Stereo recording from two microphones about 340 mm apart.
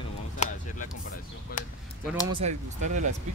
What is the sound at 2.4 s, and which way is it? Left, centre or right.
Speech, centre.